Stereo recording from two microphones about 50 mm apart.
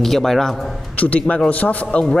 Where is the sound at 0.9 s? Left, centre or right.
Left.